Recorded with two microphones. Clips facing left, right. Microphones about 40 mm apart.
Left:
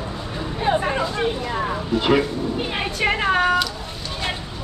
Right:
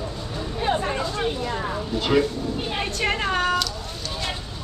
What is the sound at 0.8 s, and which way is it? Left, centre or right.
Speech, centre.